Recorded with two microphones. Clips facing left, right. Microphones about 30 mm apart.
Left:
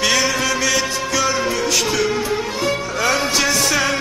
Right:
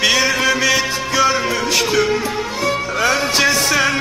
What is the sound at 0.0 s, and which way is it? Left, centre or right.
Music, centre.